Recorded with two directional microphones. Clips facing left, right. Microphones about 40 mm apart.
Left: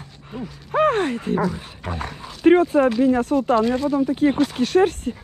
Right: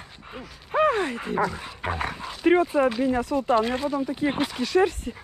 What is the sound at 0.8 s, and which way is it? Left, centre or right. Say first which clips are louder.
Speech: left 3 dB; left.